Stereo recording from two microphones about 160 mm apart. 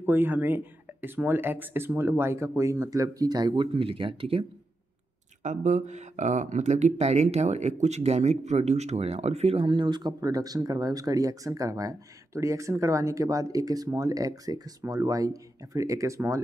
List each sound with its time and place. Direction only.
0.0 s speech: 10° right (ahead or behind); by 4.5 s 35° right (ahead or behind)
5.4 s speech: 50° right (ahead or behind); by 16.4 s 15° right (ahead or behind)